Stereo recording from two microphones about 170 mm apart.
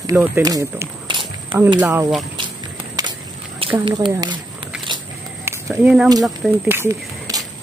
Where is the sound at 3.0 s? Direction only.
20° right (ahead or behind).